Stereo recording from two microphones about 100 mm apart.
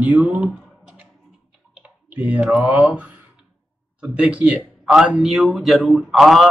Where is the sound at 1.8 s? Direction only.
10° right (ahead or behind).